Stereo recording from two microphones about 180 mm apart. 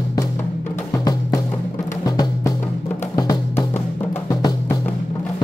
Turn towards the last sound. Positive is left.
turn(degrees=20)  # may be behind; listen again after turning